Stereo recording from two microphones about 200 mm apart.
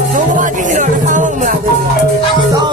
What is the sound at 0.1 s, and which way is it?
Music, 40° right (ahead or behind).